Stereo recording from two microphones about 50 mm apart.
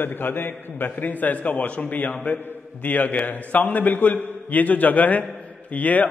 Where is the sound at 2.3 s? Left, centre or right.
Left.